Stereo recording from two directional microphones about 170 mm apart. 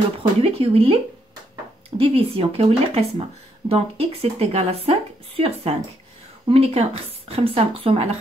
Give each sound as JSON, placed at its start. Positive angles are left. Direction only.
{"t": 0.4, "sound": "speech", "side_deg": -35}
{"t": 2.0, "sound": "speech", "side_deg": -35}